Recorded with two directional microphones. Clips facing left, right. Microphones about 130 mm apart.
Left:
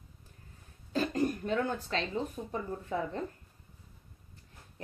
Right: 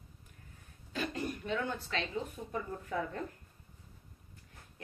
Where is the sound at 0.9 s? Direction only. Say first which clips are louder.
Left 7 dB; 40° left (ahead or behind).